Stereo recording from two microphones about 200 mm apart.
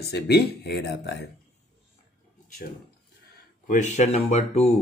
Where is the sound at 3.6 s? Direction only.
40° left (ahead or behind).